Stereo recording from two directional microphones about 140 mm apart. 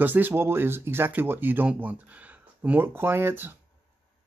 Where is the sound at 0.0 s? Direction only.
15° right (ahead or behind).